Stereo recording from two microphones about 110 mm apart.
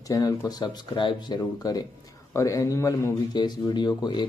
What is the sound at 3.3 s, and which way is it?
Speech, 40° left (ahead or behind).